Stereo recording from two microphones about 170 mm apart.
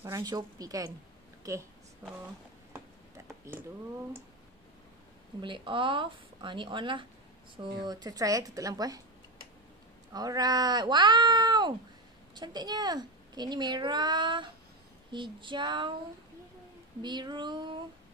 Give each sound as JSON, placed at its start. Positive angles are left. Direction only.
{"t": 0.0, "sound": "a woman's voice", "side_deg": -20}
{"t": 5.4, "sound": "a woman's voice", "side_deg": -30}
{"t": 10.1, "sound": "a woman's voice", "side_deg": -20}
{"t": 17.0, "sound": "a woman's voice", "side_deg": -25}